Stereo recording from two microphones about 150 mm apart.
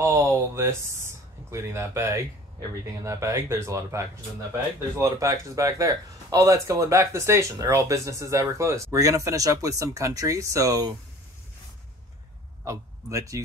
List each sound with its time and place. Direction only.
0.0 s a sound: 20° right (ahead or behind)
3.1 s speech: 20° right (ahead or behind)
12.6 s a man's voice: 20° right (ahead or behind)